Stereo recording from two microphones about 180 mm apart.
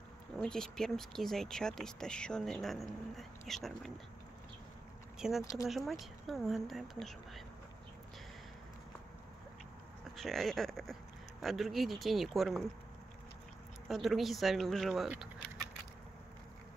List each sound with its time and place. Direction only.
0.4 s speech: 5° left (ahead or behind)
5.4 s speech: 20° left (ahead or behind)
5.7 s speech: centre (ahead or behind)
10.1 s speech: centre (ahead or behind)
13.8 s speech: centre (ahead or behind)